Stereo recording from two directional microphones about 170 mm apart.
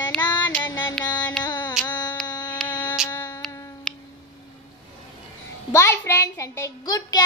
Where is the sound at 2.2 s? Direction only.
25° left (ahead or behind).